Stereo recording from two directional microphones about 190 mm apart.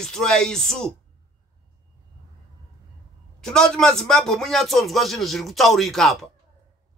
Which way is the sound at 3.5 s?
5° left (ahead or behind).